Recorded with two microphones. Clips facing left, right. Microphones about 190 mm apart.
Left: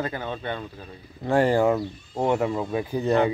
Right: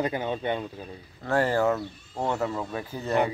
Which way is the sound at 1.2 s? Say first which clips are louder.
Left 4 dB; 15° left (ahead or behind).